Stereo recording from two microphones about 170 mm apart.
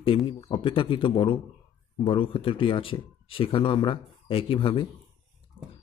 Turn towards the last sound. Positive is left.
turn(degrees=30)  # may be behind; listen again after turning